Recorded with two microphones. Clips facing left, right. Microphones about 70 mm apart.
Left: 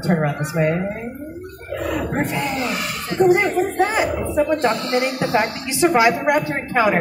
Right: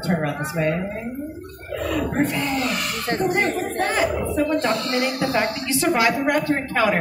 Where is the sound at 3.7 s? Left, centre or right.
Centre.